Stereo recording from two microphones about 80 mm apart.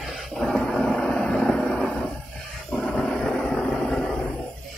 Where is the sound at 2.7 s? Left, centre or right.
Centre.